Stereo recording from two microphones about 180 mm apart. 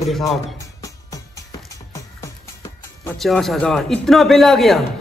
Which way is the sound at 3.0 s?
Centre (ahead or behind).